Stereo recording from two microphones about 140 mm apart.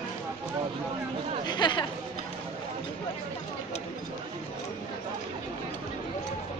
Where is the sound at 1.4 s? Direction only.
30° left (ahead or behind).